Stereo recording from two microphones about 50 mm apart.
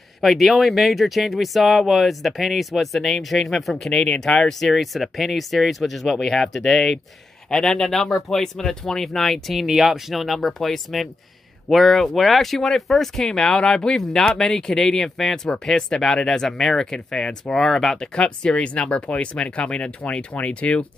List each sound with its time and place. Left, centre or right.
0.2 s speech: centre
9.5 s speech: centre; by 20.8 s left